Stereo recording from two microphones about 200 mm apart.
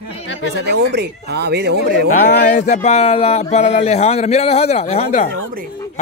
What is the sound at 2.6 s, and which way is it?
Speech, 35° left (ahead or behind).